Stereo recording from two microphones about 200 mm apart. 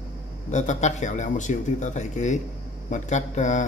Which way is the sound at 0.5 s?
35° left (ahead or behind).